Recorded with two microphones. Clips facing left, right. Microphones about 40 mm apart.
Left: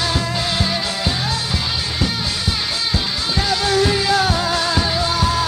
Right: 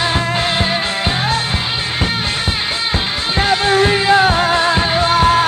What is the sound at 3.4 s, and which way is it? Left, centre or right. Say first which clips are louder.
Music: right 5 dB; right.